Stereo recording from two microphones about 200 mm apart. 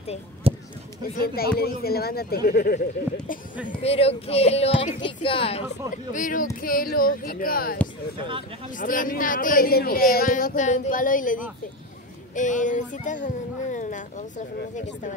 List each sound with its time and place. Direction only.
0.5 s a sound: 30° right (ahead or behind)
1.2 s speech: 50° left (ahead or behind)
3.6 s speech: 30° left (ahead or behind)
6.1 s speech: 40° left (ahead or behind)
8.2 s speech: 25° right (ahead or behind)
8.7 s speech: 40° left (ahead or behind)